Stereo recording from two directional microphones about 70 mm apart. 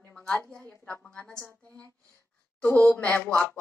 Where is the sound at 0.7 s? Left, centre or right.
Left.